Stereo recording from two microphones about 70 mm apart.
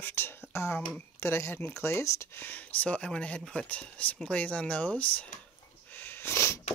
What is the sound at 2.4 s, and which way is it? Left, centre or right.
Speech, left.